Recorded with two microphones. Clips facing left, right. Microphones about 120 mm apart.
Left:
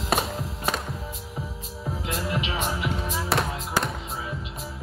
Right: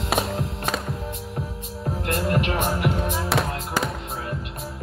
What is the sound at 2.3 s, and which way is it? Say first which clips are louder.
Music: right 6 dB; 55° right (ahead or behind).